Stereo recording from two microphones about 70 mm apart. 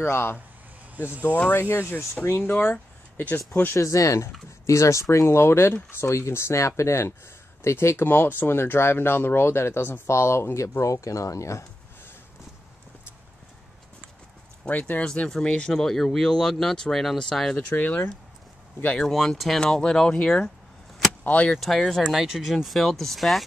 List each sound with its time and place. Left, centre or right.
0.0 s speech: left
1.5 s speech: left
2.5 s speech: left
3.7 s speech: left
6.0 s speech: left
14.7 s speech: left
15.0 s speech: centre
17.6 s speech: left
18.9 s speech: centre
21.5 s speech: centre